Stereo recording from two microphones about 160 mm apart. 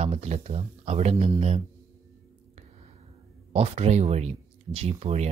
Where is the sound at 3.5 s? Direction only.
40° right (ahead or behind).